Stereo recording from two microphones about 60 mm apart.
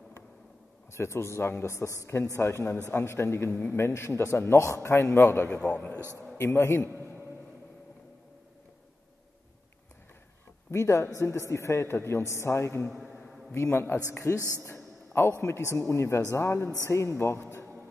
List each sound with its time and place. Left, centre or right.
0.9 s a man's voice: left
5.6 s a man's voice: left
6.3 s a man's voice: left
10.7 s a man's voice: left